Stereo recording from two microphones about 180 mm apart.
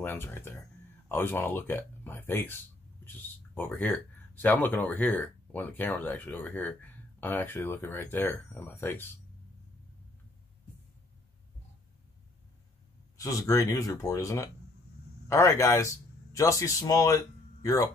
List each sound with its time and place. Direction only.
0.0 s speech: 10° left (ahead or behind)
13.2 s speech: 20° left (ahead or behind)